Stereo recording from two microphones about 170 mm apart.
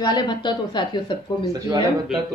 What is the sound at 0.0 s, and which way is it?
A woman's voice, 25° left (ahead or behind).